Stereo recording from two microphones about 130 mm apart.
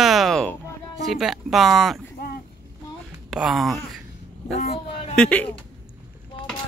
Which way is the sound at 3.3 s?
Centre (ahead or behind).